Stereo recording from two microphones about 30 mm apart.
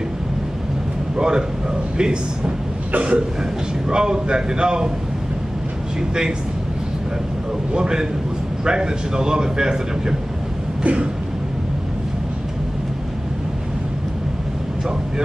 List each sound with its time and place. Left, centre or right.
1.1 s a man's voice: right
3.0 s a sound: right
3.9 s speech: right
5.9 s speech: right
7.7 s speech: right